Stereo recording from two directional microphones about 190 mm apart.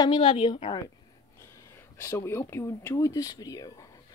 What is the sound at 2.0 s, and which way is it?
Speech, 15° left (ahead or behind).